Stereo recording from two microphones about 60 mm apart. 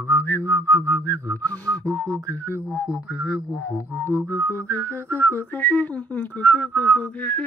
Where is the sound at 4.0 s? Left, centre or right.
Right.